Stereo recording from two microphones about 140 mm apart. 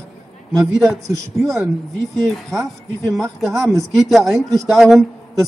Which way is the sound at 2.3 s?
Centre (ahead or behind).